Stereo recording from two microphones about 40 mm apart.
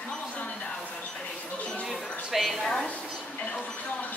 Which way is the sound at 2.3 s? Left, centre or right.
Centre.